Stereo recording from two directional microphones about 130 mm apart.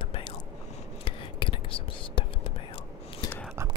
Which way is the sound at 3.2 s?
30° left (ahead or behind).